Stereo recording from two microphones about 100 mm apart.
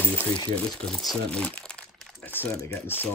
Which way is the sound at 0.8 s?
5° left (ahead or behind).